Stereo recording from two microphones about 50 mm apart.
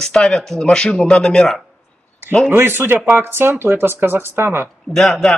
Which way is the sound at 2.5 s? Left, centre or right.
Right.